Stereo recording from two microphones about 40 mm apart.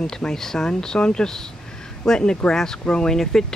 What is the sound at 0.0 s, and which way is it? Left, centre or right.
Speech, centre.